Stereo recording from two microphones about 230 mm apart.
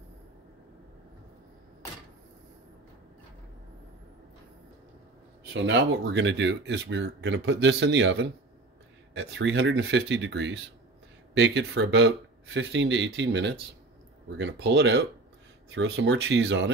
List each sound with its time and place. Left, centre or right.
5.5 s speech: right